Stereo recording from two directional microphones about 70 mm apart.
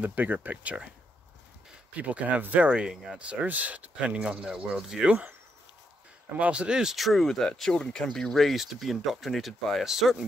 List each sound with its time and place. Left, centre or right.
0.0 s speech: right
2.0 s speech: right
6.3 s speech: centre